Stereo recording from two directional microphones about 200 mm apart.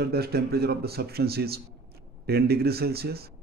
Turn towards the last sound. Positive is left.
turn(degrees=-50)  # may be behind; listen again after turning